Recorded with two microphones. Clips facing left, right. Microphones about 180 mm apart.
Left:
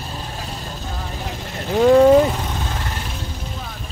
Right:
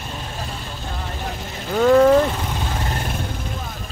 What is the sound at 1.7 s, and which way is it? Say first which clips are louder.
Vehicle: left 2 dB; 15° left (ahead or behind).